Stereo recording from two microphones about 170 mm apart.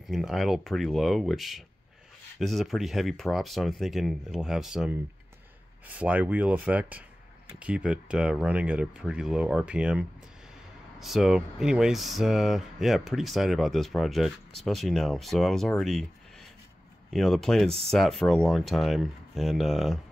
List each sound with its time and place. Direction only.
0.0 s speech: centre (ahead or behind)